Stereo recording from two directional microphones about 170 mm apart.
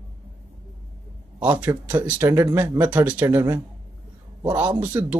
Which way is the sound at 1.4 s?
10° right (ahead or behind).